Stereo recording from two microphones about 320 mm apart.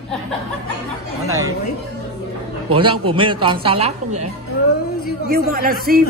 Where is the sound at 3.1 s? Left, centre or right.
Centre.